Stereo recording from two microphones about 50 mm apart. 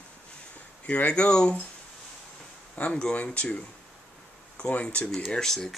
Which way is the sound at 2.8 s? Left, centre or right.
Left.